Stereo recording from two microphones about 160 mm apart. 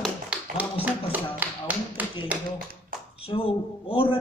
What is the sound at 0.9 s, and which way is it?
Speech, 10° right (ahead or behind).